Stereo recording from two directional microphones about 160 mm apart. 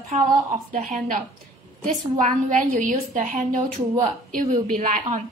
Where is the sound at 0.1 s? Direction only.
45° right (ahead or behind).